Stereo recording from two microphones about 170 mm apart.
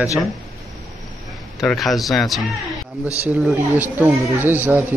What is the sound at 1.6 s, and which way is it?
Speech, centre (ahead or behind).